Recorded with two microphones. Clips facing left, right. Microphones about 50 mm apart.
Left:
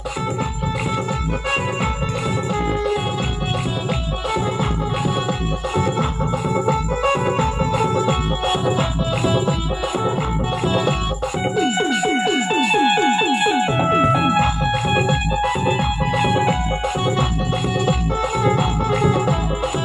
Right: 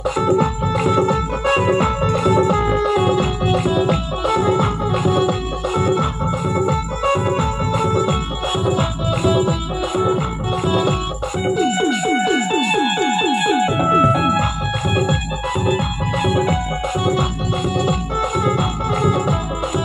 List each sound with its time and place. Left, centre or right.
0.4 s music: centre
7.1 s music: left
10.7 s music: left
12.4 s music: left
13.4 s music: left
15.6 s music: left
18.4 s music: left